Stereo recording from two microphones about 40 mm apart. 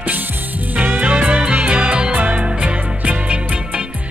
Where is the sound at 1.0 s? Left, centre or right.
Right.